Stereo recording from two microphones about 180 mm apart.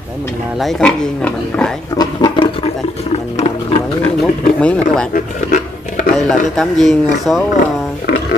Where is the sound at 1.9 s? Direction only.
25° left (ahead or behind).